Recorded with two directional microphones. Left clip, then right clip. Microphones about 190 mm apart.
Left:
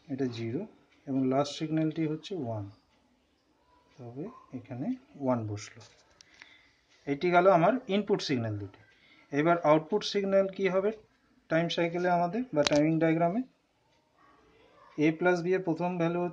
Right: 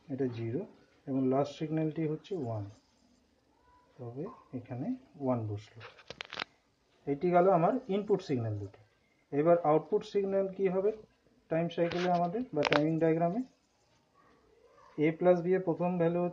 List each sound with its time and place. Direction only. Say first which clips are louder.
0.1 s speech: left 1 dB; 25° left (ahead or behind)
4.2 s speech: left 1 dB; 30° left (ahead or behind)
7.1 s speech: left 3 dB; 30° left (ahead or behind)
15.0 s speech: even; 30° left (ahead or behind)